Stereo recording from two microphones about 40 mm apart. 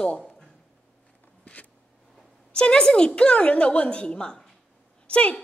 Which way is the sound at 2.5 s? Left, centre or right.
Left.